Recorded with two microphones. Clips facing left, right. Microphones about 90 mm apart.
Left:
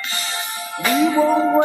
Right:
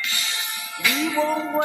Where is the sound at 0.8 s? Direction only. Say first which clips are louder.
Left 7 dB; 35° left (ahead or behind).